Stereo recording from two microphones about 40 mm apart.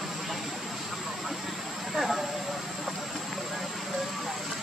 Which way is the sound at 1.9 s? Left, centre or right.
Centre.